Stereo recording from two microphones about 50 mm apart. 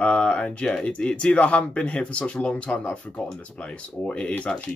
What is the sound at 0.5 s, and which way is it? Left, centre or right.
Speech, left.